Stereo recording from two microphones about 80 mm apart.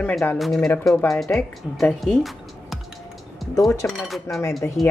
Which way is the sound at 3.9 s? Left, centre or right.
Centre.